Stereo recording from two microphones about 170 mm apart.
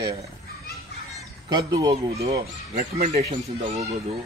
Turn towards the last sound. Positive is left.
turn(degrees=-40)  # may be behind; listen again after turning